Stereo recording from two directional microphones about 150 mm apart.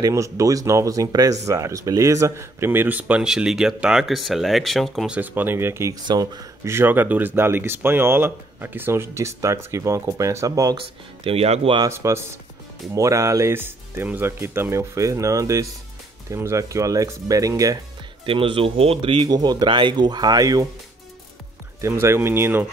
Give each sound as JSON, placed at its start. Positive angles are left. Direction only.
{"t": 0.0, "sound": "speech", "side_deg": -20}
{"t": 11.2, "sound": "speech", "side_deg": -45}
{"t": 11.8, "sound": "speech", "side_deg": -20}
{"t": 18.2, "sound": "speech", "side_deg": -35}
{"t": 21.8, "sound": "speech", "side_deg": -20}